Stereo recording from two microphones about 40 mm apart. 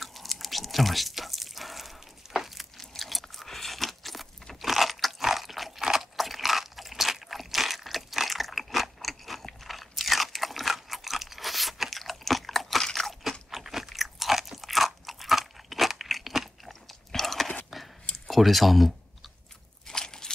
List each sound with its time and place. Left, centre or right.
0.0 s a sound: centre
3.0 s chewing: centre
4.6 s crunch: centre
17.1 s whispering: centre
18.3 s speech: centre
19.9 s biting: centre